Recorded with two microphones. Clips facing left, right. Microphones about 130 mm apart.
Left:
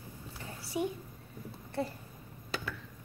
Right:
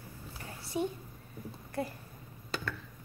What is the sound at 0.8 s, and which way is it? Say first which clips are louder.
Speech: even; 10° left (ahead or behind).